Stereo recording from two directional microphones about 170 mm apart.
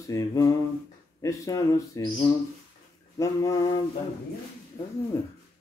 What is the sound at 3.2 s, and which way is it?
Speech, 20° left (ahead or behind).